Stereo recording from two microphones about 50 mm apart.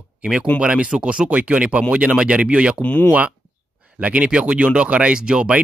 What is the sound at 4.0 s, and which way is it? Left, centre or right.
Speech, right.